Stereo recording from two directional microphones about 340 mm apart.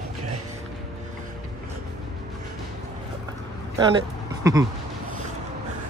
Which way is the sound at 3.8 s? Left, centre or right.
Centre.